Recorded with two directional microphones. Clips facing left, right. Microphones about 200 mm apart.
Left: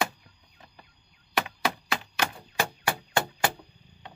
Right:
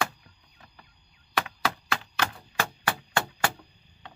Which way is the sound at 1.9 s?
15° left (ahead or behind).